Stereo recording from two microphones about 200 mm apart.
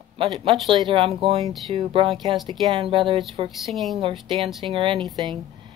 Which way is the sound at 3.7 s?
Centre (ahead or behind).